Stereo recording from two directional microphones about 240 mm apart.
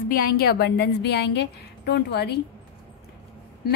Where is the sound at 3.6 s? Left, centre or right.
Left.